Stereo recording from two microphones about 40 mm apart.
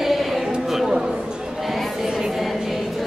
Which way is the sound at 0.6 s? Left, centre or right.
Centre.